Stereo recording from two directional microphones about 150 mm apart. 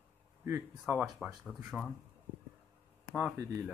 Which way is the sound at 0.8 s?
5° right (ahead or behind).